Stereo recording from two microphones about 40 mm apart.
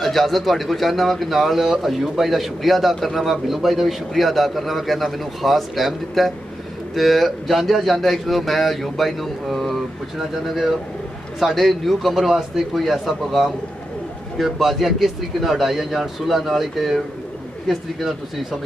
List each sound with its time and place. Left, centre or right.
0.0 s a man's voice: centre